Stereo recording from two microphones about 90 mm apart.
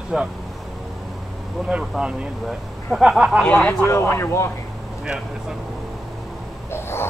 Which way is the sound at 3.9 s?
30° left (ahead or behind).